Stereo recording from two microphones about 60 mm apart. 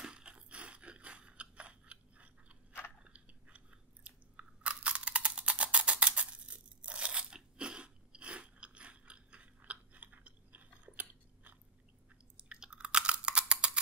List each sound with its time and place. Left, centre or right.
0.0 s chewing: centre
12.4 s chewing: centre